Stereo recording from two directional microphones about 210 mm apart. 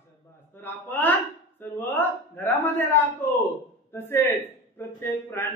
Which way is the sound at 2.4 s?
10° left (ahead or behind).